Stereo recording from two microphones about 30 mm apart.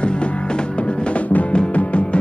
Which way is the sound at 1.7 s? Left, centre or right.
Left.